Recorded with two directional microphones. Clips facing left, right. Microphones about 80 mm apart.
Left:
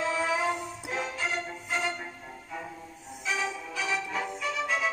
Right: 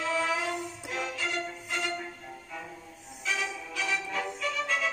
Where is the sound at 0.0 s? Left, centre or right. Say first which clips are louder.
Left 2 dB; centre.